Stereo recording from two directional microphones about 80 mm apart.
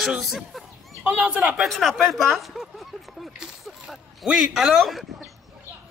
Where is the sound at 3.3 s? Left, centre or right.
Centre.